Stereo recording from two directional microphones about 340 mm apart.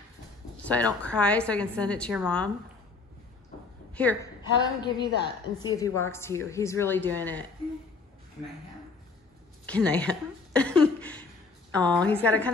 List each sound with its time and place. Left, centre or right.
0.7 s a woman's voice: centre
3.9 s a woman's voice: centre
9.7 s a sound: centre
11.7 s a woman's voice: centre